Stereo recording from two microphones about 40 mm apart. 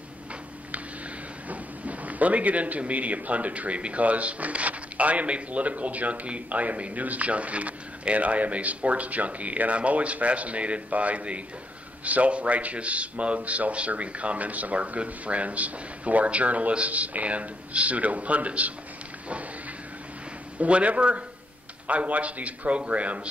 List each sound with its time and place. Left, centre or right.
1.5 s speech: right
20.5 s speech: right